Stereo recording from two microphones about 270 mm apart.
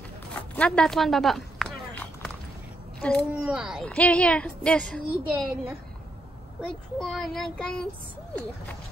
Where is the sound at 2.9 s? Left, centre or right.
Centre.